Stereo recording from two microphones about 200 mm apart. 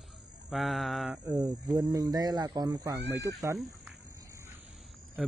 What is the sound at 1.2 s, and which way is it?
Speech, 15° right (ahead or behind).